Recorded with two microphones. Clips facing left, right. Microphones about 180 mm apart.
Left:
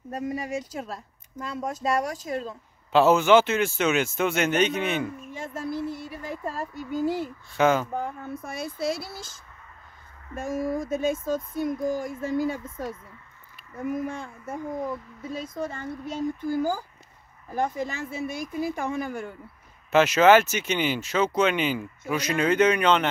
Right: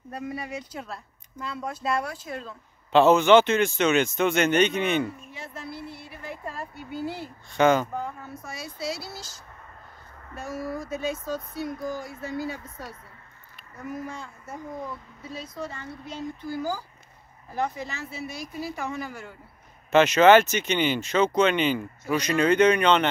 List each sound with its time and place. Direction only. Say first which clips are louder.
0.1 s speech: left 4 dB; 45° left (ahead or behind)
2.9 s speech: right 1 dB; 5° left (ahead or behind)
5.2 s speech: left 6 dB; 45° left (ahead or behind)
7.5 s speech: right 1 dB; 5° left (ahead or behind)
8.0 s speech: left 3 dB; 55° left (ahead or behind)
19.9 s speech: right 1 dB; 5° left (ahead or behind)